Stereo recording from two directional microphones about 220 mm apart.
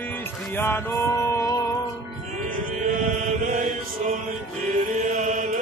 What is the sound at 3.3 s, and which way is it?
Mantra, 35° right (ahead or behind).